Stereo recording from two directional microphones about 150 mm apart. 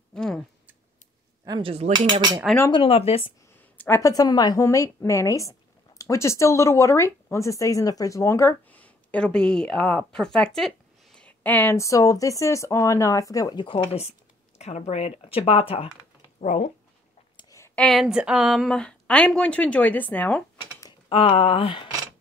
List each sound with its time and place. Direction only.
0.1 s a sound: 5° left (ahead or behind)
1.4 s speech: 25° right (ahead or behind)
1.7 s speech: 40° right (ahead or behind)
2.7 s speech: 40° left (ahead or behind)
3.7 s a woman's voice: 15° left (ahead or behind)
14.6 s speech: 50° left (ahead or behind)
16.3 s speech: 55° left (ahead or behind)
17.4 s a sound: 20° left (ahead or behind)
17.7 s speech: centre (ahead or behind)
21.1 s speech: 35° left (ahead or behind)